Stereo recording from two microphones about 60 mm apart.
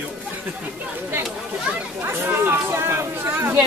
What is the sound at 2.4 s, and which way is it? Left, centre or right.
Speech, right.